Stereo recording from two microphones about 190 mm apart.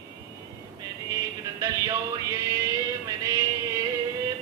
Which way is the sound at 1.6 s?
15° right (ahead or behind).